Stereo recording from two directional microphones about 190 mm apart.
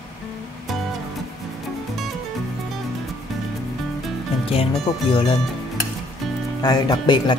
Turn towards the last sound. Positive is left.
turn(degrees=25)  # may be behind; listen again after turning